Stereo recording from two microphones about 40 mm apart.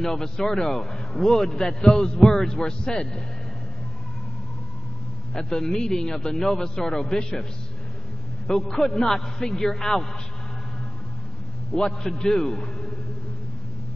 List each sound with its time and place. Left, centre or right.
0.0 s a man's voice: centre
5.3 s a man's voice: centre
8.5 s a man's voice: centre
11.7 s a man's voice: left